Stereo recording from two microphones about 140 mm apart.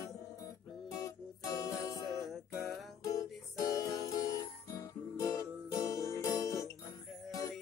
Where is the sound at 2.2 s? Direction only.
Centre (ahead or behind).